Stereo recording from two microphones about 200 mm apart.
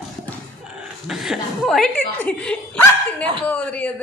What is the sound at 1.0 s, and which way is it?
Speech, centre (ahead or behind).